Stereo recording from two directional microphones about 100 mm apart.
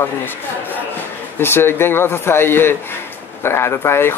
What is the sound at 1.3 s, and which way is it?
Speech, 25° left (ahead or behind).